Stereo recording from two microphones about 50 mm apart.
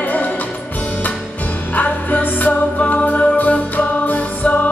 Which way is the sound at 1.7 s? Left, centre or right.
Left.